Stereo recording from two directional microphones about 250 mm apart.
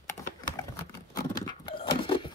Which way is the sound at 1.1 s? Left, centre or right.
Centre.